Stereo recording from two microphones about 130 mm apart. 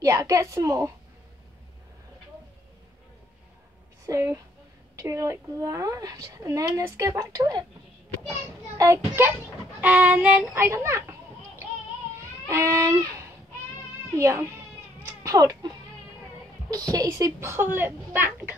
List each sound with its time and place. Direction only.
0.0 s a woman's voice: 25° right (ahead or behind)
4.0 s a woman's voice: 20° right (ahead or behind)
8.7 s a child's voice: 20° right (ahead or behind)
12.4 s a sound: 25° right (ahead or behind)
14.1 s a child's voice: 20° right (ahead or behind)
15.0 s baby cry: 25° right (ahead or behind)
16.7 s a child's voice: 30° right (ahead or behind)